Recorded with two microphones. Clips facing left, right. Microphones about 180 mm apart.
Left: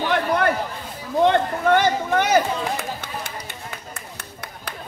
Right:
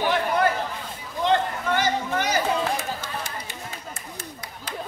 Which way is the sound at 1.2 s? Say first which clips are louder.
Left 4 dB; 60° left (ahead or behind).